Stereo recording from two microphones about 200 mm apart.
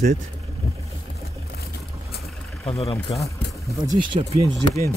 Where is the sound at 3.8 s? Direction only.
20° right (ahead or behind).